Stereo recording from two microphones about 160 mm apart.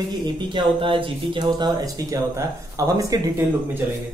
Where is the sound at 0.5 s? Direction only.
30° right (ahead or behind).